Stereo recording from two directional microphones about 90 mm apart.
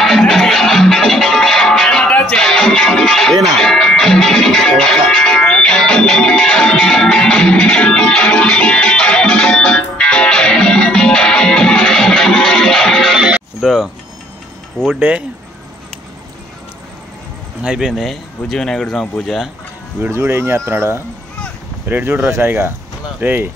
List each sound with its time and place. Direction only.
0.0 s music: centre (ahead or behind)
15.0 s speech: 15° right (ahead or behind)
17.6 s speech: 5° right (ahead or behind)
20.0 s speech: 30° right (ahead or behind)